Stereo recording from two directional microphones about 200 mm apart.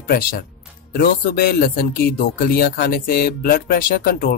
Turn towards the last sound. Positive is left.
turn(degrees=50)  # may be behind; listen again after turning